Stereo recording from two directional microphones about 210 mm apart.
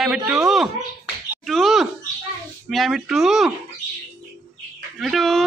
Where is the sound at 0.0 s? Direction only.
5° right (ahead or behind).